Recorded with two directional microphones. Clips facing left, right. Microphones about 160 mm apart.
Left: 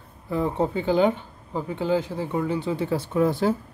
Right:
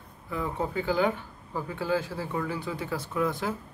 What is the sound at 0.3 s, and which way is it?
Speech, 30° left (ahead or behind).